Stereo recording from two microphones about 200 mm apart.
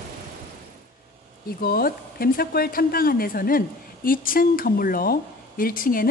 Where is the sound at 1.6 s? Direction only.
50° left (ahead or behind).